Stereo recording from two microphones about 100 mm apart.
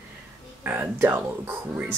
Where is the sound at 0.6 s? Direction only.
20° right (ahead or behind).